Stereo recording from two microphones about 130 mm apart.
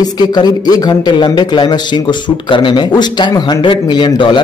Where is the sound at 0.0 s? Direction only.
30° left (ahead or behind).